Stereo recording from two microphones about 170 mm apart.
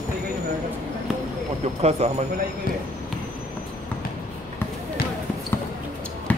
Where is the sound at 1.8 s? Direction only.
40° right (ahead or behind).